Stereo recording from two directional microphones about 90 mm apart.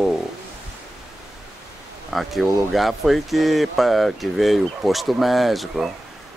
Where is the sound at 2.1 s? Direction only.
Centre (ahead or behind).